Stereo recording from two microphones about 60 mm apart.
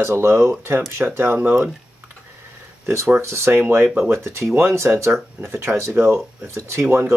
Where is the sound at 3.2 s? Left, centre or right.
Right.